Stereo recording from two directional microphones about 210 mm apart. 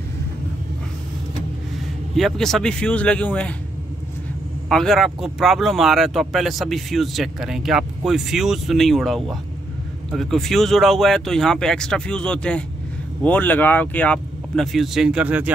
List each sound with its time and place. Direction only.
2.1 s speech: centre (ahead or behind)
4.6 s speech: centre (ahead or behind)